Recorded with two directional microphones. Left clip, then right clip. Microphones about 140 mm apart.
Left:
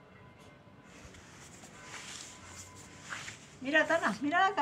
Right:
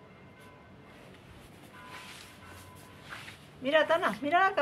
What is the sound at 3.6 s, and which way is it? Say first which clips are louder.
A woman's voice: right 3 dB; 40° right (ahead or behind).